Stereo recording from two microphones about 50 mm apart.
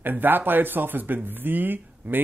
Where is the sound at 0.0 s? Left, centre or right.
Right.